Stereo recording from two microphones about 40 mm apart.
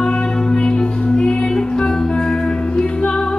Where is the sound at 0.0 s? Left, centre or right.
Left.